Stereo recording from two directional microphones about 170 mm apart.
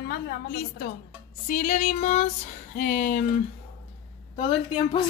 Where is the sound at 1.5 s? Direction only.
45° left (ahead or behind).